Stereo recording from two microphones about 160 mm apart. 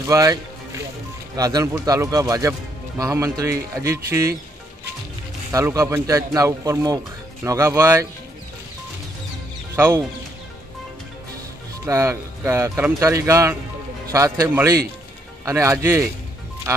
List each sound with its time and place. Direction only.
0.0 s speech: 20° right (ahead or behind)
5.5 s speech: 20° right (ahead or behind)
9.8 s speech: 15° right (ahead or behind)
11.8 s speech: 20° right (ahead or behind)